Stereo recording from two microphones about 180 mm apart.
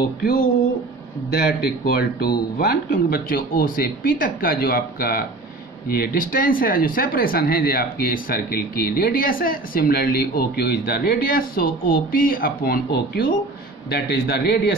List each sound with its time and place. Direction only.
0.2 s speech: 55° left (ahead or behind)
1.9 s speech: 60° left (ahead or behind)